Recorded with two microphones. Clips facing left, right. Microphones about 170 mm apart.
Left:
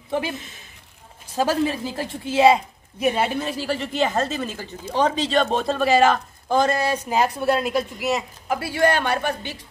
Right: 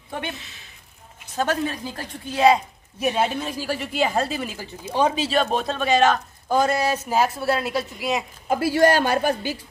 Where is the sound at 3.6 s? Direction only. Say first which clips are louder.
Even; 10° right (ahead or behind).